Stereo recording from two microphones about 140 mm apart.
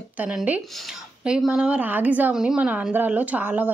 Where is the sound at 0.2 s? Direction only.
10° right (ahead or behind).